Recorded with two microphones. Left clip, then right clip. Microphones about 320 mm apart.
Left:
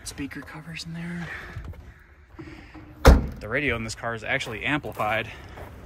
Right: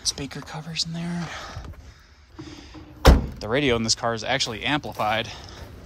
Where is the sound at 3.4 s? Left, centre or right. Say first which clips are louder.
Right 7 dB; centre.